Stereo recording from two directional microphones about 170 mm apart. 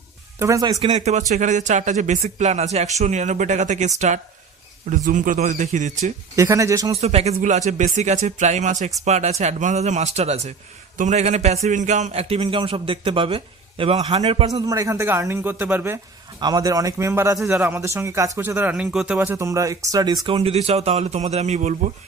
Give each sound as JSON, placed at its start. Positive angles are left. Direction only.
{"t": 0.4, "sound": "a man's voice", "side_deg": -20}
{"t": 0.8, "sound": "a man's voice", "side_deg": -40}
{"t": 6.3, "sound": "a man's voice", "side_deg": -20}
{"t": 7.0, "sound": "a man's voice", "side_deg": -40}
{"t": 14.5, "sound": "a man's voice", "side_deg": -20}
{"t": 19.1, "sound": "a man's voice", "side_deg": -15}
{"t": 20.2, "sound": "a man's voice", "side_deg": -35}